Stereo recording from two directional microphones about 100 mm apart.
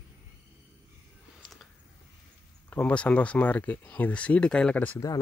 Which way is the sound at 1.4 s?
Centre (ahead or behind).